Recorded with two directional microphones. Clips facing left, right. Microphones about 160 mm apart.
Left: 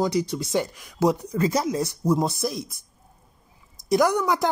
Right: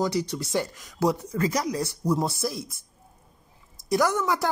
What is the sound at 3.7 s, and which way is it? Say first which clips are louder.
Speech: left 3 dB; 15° left (ahead or behind).